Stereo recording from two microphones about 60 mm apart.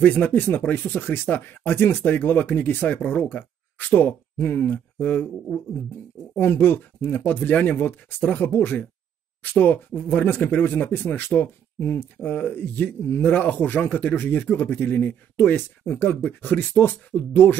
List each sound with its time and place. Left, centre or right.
0.0 s speech: left
6.3 s speech: left